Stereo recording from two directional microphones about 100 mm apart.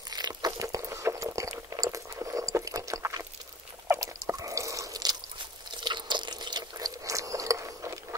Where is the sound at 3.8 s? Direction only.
30° right (ahead or behind).